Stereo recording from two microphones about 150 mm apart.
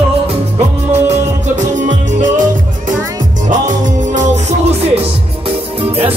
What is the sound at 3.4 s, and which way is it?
Music, 55° right (ahead or behind).